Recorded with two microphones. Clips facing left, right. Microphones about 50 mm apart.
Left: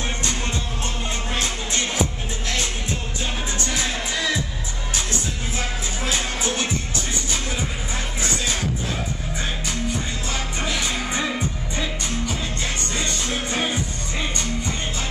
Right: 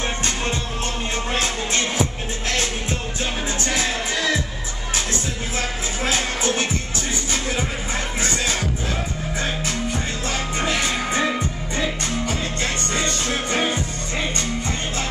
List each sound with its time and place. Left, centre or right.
1.3 s music: right
6.0 s music: right
10.6 s music: right
12.9 s music: right